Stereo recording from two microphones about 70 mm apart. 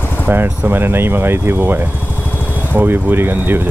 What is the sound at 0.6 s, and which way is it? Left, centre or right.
Speech, right.